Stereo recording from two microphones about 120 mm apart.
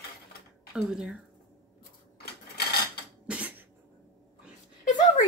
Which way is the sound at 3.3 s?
10° right (ahead or behind).